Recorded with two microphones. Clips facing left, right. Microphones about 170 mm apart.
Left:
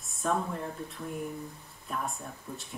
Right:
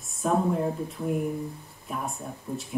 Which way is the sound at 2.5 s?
20° right (ahead or behind).